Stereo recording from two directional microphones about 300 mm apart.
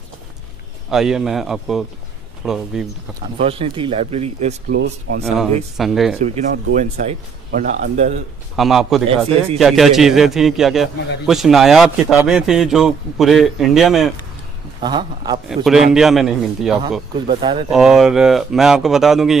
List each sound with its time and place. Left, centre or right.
0.8 s a man's voice: centre
3.3 s speech: centre
4.7 s speech: right
5.8 s a man's voice: centre
6.2 s speech: right
8.5 s a man's voice: centre
14.8 s a man's voice: centre
15.4 s a man's voice: centre
17.3 s a man's voice: centre
17.6 s a man's voice: centre